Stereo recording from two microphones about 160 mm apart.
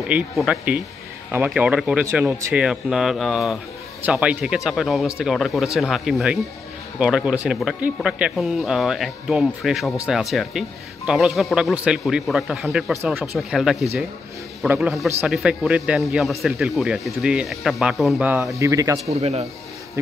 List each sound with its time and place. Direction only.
0.1 s speech: 5° right (ahead or behind)
12.9 s speech: 15° right (ahead or behind)
13.2 s speech: centre (ahead or behind)
18.6 s speech: 20° right (ahead or behind)